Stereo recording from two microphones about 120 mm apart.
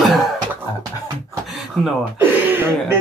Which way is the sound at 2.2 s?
15° right (ahead or behind).